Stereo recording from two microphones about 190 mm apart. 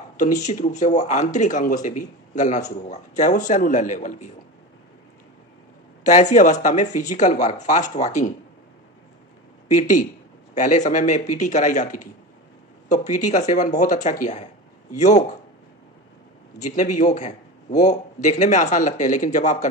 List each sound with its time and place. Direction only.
0.2 s a man's voice: 40° left (ahead or behind)
6.0 s a man's voice: 40° left (ahead or behind)
9.7 s a man's voice: 40° left (ahead or behind)
16.6 s a man's voice: 40° left (ahead or behind)